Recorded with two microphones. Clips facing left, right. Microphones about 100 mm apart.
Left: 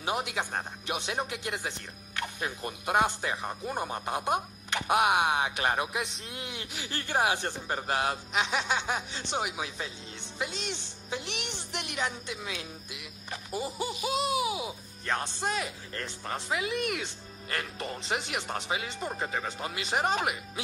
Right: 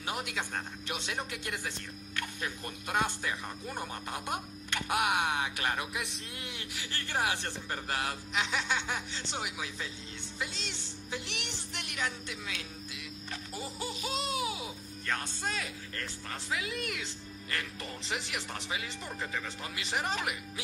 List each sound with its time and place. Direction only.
0.0 s speech: 20° left (ahead or behind)
15.0 s speech: 25° left (ahead or behind)
17.7 s speech: 20° left (ahead or behind)
19.0 s speech: 45° left (ahead or behind)
19.6 s speech: 20° left (ahead or behind)